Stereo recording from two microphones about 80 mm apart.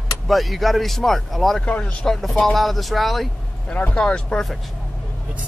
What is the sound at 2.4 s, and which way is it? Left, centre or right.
Speech, centre.